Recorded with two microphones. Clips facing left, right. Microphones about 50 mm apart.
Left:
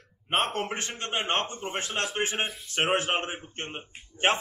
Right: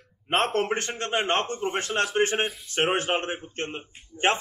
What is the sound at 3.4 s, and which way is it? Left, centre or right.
Speech, centre.